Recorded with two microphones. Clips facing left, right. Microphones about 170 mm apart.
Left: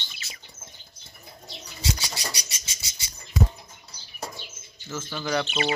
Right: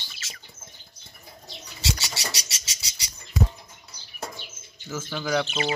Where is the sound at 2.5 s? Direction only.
90° right.